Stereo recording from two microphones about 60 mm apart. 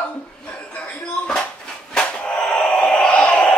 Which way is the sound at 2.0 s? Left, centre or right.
Centre.